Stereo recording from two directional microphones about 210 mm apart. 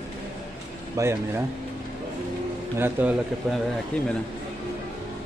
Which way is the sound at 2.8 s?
10° right (ahead or behind).